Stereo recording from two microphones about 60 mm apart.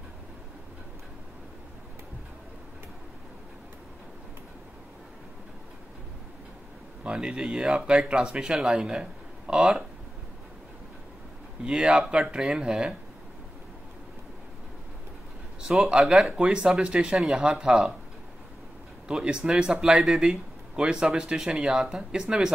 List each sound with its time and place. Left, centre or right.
7.0 s speech: centre
11.6 s speech: centre
15.7 s speech: centre
19.0 s speech: centre